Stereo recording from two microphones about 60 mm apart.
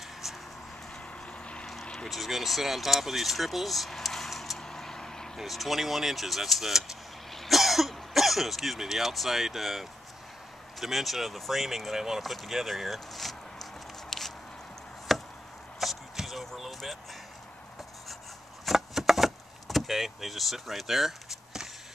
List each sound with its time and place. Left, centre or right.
0.2 s a sound: centre
1.2 s vehicle: centre
2.0 s speech: centre
5.4 s speech: centre
14.1 s a sound: centre
15.1 s chop: centre
18.7 s vehicle: centre